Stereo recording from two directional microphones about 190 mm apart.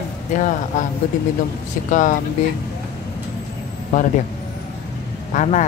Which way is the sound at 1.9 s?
40° left (ahead or behind).